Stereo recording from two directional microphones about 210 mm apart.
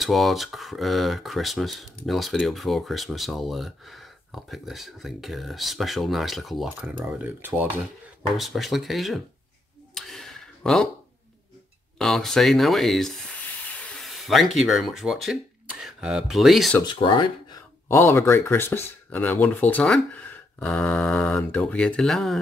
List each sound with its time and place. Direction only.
0.0 s speech: centre (ahead or behind)
9.9 s a sound: centre (ahead or behind)
12.0 s speech: centre (ahead or behind)
16.8 s speech: 20° left (ahead or behind)
17.8 s speech: 10° left (ahead or behind)